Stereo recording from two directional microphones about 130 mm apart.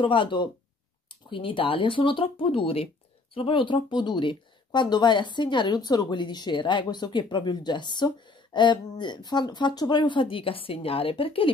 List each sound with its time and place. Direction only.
0.0 s speech: 40° left (ahead or behind)